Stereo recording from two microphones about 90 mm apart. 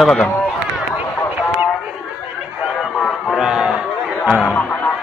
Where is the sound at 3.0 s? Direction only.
Centre (ahead or behind).